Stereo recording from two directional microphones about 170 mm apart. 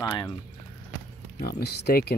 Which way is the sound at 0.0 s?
25° left (ahead or behind).